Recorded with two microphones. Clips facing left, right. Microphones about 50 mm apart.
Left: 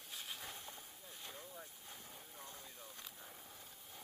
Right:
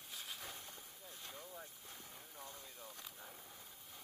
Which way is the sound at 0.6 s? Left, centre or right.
Left.